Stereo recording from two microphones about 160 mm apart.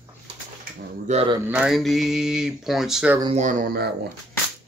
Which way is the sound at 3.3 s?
50° right (ahead or behind).